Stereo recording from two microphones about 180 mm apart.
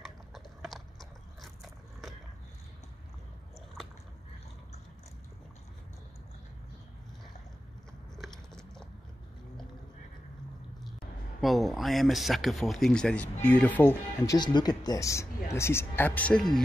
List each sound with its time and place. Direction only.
0.0 s biting: centre (ahead or behind)
8.2 s biting: 5° left (ahead or behind)
11.4 s speech: centre (ahead or behind)